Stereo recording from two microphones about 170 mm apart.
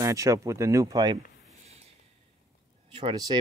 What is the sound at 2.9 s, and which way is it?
Speech, 25° right (ahead or behind).